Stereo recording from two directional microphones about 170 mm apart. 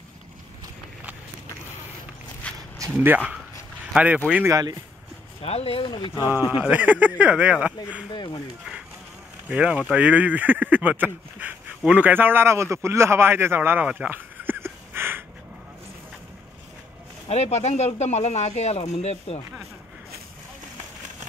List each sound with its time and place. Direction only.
2.4 s a sound: 10° left (ahead or behind)
3.0 s speech: 10° right (ahead or behind)
5.4 s speech: 35° left (ahead or behind)
6.5 s speech: 10° right (ahead or behind)
8.1 s speech: 25° left (ahead or behind)
9.5 s speech: 5° right (ahead or behind)
17.3 s speech: 40° left (ahead or behind)